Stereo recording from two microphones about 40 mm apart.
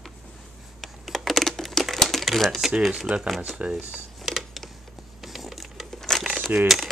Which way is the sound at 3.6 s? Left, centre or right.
Right.